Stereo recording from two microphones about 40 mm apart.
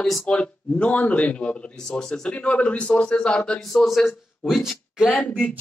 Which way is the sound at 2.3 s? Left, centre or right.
Left.